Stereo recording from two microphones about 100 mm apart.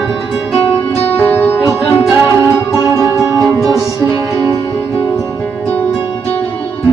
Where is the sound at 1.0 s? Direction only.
20° left (ahead or behind).